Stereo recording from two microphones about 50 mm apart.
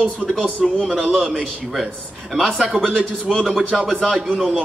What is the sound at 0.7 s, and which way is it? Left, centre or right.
A man's voice, centre.